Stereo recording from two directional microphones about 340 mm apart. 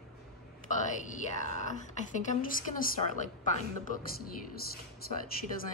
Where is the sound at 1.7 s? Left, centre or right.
Left.